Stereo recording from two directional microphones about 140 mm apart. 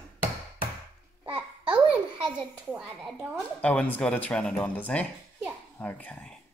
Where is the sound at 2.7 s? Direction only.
5° right (ahead or behind).